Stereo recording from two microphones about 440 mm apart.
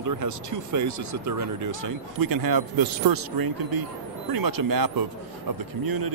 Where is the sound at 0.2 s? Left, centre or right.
Right.